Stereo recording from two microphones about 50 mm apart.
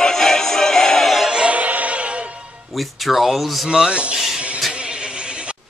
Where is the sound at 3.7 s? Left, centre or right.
Centre.